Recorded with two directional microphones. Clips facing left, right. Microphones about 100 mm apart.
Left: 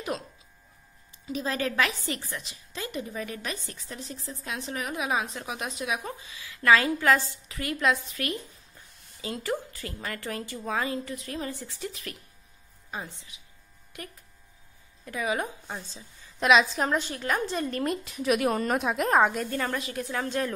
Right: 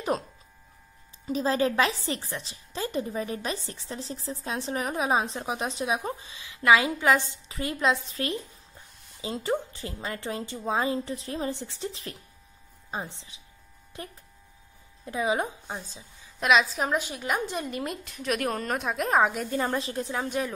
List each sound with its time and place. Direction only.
1.3 s a woman's voice: 30° right (ahead or behind); by 16.0 s 15° right (ahead or behind)
16.3 s a woman's voice: centre (ahead or behind)
18.0 s a woman's voice: 5° left (ahead or behind)
19.6 s a woman's voice: 25° right (ahead or behind)